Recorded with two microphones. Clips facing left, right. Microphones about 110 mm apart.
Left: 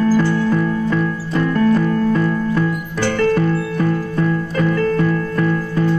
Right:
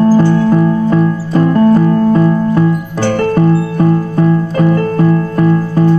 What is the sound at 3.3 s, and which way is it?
Music, 35° right (ahead or behind).